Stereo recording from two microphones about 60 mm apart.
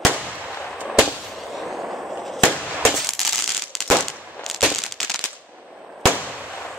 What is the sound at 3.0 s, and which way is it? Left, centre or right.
Fireworks, centre.